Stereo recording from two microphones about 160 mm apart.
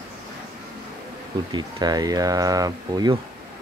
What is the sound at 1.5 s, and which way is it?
Speech, 25° right (ahead or behind).